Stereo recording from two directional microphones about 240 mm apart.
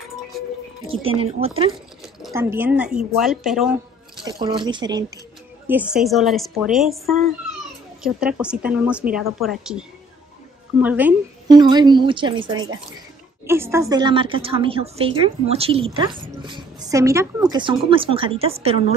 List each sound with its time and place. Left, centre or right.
1.0 s a woman's voice: right
2.3 s speech: centre
4.2 s a woman's voice: centre
5.7 s speech: centre
8.0 s a woman's voice: centre; by 18.9 s right